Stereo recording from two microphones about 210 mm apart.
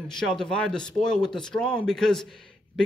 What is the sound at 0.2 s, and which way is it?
A man's voice, centre (ahead or behind).